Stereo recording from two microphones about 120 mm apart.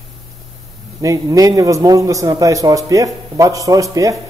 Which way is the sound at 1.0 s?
30° right (ahead or behind).